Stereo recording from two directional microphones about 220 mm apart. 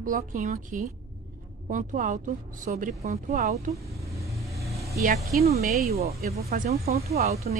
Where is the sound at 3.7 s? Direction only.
15° right (ahead or behind).